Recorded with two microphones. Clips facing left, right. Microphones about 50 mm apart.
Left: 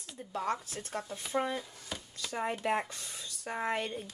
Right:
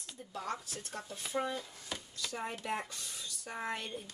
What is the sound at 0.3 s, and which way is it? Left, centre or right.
Speech, left.